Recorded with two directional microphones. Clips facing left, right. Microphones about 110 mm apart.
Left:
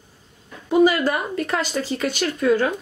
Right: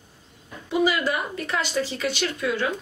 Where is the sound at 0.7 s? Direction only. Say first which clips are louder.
Left 6 dB; 45° left (ahead or behind).